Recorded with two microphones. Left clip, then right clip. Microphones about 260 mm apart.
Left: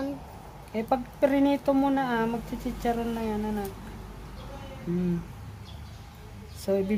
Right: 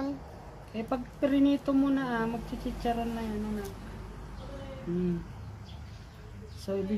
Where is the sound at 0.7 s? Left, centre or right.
Left.